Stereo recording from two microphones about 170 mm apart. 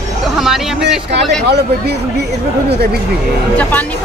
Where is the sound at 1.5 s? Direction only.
75° right (ahead or behind).